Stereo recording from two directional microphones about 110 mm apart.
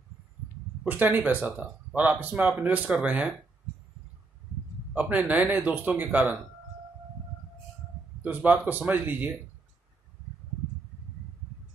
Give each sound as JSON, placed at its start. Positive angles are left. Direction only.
{"t": 0.8, "sound": "speech", "side_deg": -15}
{"t": 4.9, "sound": "speech", "side_deg": -15}
{"t": 8.2, "sound": "speech", "side_deg": -15}